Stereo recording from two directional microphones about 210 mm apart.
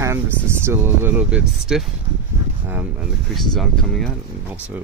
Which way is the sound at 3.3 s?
Centre (ahead or behind).